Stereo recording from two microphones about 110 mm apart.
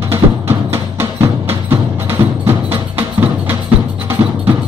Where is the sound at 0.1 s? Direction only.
20° right (ahead or behind).